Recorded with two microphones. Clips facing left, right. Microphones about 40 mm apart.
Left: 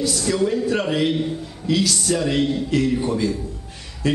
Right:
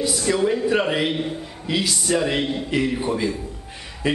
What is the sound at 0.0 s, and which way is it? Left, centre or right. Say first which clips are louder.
A man's voice: even; centre.